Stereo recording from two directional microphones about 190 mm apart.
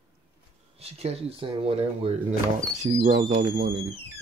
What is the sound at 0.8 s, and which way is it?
Speech, 30° right (ahead or behind).